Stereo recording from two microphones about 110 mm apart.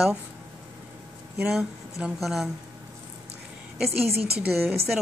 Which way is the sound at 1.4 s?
5° right (ahead or behind).